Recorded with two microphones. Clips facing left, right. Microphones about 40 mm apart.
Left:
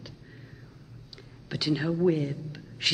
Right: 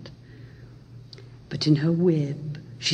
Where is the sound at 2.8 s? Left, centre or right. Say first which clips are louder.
Even; left.